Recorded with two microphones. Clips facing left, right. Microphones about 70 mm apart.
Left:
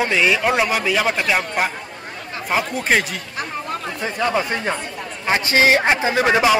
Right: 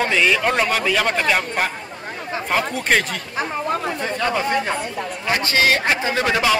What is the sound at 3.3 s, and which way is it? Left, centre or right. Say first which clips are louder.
Speech: right 5 dB; right.